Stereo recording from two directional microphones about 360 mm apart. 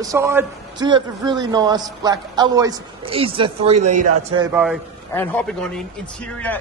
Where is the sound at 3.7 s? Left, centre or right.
Right.